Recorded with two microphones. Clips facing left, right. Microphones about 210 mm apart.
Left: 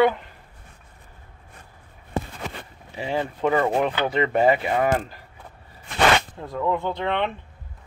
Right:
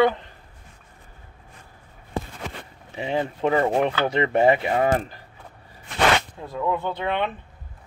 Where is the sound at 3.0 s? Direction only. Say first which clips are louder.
Right 1 dB; 25° right (ahead or behind).